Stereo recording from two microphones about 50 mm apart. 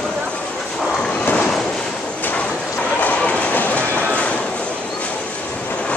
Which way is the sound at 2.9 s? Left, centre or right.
Left.